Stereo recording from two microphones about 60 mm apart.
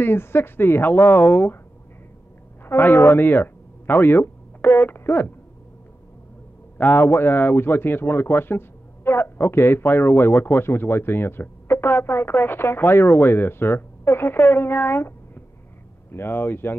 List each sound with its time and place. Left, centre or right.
0.0 s speech: left
3.0 s speech: left
3.9 s a sound: left
5.1 s speech: left
6.8 s speech: left
7.8 s speech: left
8.1 s speech: left
8.4 s speech: left
9.0 s speech: left
12.4 s speech: left